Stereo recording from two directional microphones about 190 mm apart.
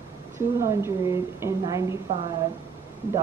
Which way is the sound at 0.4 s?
15° right (ahead or behind).